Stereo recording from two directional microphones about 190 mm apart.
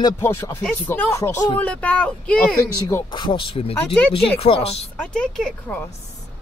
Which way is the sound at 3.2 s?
25° left (ahead or behind).